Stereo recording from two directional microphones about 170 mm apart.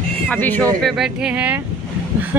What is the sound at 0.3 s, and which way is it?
Speech, 10° left (ahead or behind).